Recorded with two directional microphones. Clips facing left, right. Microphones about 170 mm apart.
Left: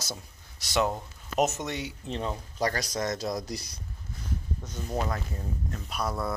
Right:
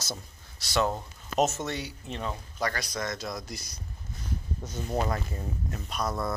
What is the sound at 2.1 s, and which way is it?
Speech, 30° left (ahead or behind).